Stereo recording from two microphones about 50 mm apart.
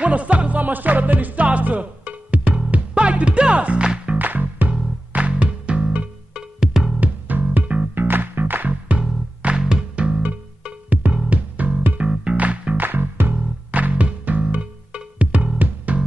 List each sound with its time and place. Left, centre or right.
0.0 s music: right
4.2 s music: right
6.3 s music: centre
7.0 s music: right
7.9 s music: right
9.6 s music: centre
9.9 s music: right
10.9 s music: right